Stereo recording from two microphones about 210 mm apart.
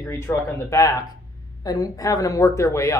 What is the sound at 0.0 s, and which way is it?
Speech, 10° left (ahead or behind).